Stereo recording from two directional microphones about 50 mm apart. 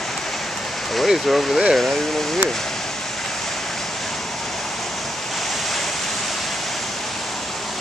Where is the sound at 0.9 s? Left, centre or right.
Centre.